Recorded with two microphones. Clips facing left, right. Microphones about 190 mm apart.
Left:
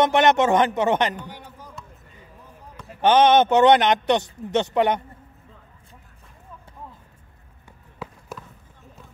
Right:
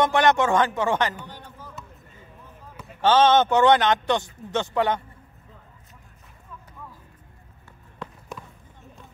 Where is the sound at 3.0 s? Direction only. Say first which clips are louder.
Left 2 dB; 20° left (ahead or behind).